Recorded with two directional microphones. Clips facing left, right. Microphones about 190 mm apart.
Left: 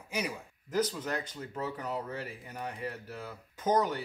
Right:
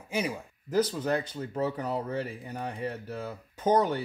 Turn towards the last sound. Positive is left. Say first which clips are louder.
# right 4 dB
turn(degrees=-30)  # may be behind; listen again after turning